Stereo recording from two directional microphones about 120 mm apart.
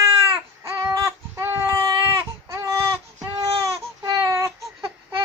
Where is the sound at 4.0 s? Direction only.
30° right (ahead or behind).